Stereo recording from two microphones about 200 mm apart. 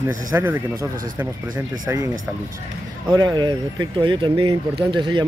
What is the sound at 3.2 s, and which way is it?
Speech, 20° right (ahead or behind).